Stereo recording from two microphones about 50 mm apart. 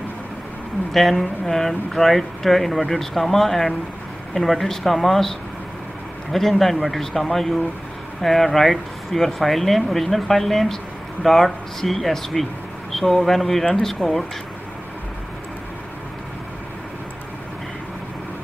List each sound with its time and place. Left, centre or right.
0.9 s speech: centre
6.6 s speech: centre
14.0 s speech: left